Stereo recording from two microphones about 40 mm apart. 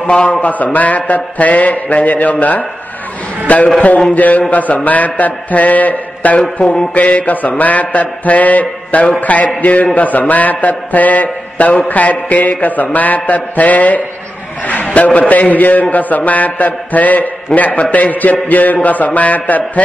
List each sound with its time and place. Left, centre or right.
0.0 s mantra: left
3.5 s mantra: left
6.4 s a sound: centre
6.9 s mantra: left
14.9 s a man's voice: left
17.6 s mantra: left
17.9 s a man's voice: left